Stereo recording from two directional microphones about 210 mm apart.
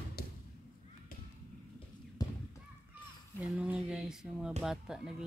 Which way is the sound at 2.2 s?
20° left (ahead or behind).